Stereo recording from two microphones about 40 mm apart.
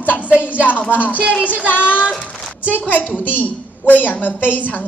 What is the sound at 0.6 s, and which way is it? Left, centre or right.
A woman's voice, left.